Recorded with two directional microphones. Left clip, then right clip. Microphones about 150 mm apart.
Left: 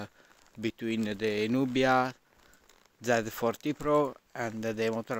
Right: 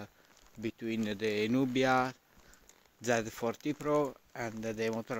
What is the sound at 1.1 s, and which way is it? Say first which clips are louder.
Speech: left 1 dB; 25° left (ahead or behind).